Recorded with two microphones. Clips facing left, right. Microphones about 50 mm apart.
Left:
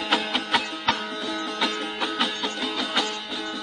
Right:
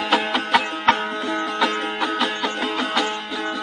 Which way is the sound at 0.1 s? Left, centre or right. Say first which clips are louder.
Right 5 dB; centre.